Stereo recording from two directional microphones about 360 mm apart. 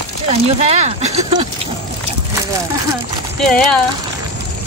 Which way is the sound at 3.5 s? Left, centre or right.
Centre.